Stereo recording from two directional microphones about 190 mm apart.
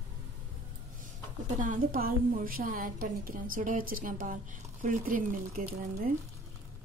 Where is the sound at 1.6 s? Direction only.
45° right (ahead or behind).